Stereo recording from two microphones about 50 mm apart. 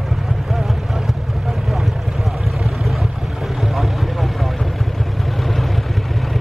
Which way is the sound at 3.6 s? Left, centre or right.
Centre.